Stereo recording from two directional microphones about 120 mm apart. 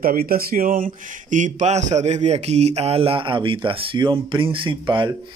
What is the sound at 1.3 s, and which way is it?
Speech, 80° right.